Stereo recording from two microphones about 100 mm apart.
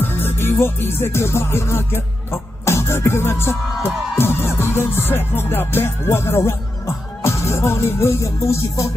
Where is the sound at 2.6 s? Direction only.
25° left (ahead or behind).